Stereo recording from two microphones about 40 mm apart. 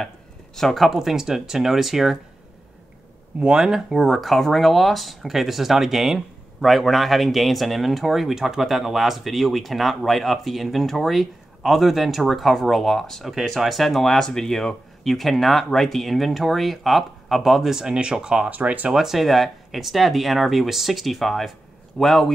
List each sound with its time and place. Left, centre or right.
0.6 s speech: centre
0.8 s speech: centre
3.3 s speech: right; by 17.6 s centre
17.6 s speech: centre
18.5 s speech: right
18.9 s speech: centre